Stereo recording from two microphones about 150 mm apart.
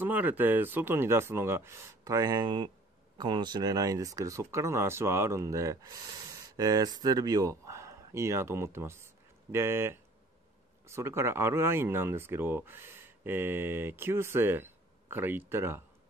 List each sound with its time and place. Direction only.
0.0 s speech: 10° right (ahead or behind)